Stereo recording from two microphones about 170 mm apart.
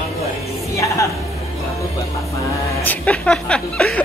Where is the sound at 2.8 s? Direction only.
10° left (ahead or behind).